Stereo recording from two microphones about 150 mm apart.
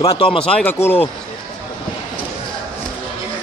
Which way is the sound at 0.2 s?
35° left (ahead or behind).